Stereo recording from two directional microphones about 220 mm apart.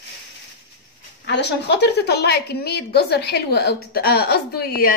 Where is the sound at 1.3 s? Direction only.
50° left (ahead or behind).